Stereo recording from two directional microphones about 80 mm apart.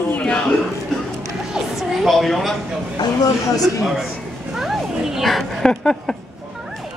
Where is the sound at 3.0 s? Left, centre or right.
Left.